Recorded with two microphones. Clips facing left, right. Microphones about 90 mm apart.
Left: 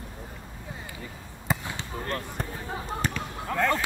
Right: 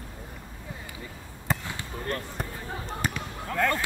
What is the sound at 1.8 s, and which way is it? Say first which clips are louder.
Basketball bounce: even; 25° left (ahead or behind).